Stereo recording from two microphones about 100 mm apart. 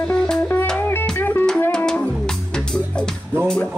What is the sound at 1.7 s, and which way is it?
Music, 5° left (ahead or behind).